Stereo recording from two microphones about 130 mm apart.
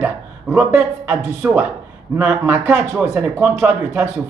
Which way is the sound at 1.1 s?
15° right (ahead or behind).